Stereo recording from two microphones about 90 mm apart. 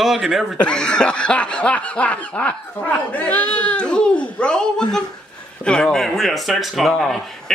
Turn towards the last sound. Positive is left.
turn(degrees=5)  # may be behind; listen again after turning